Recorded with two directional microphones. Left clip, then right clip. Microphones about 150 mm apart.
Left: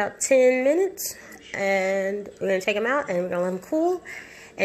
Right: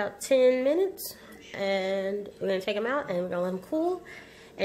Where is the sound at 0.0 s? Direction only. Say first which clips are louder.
Left 4 dB; 20° left (ahead or behind).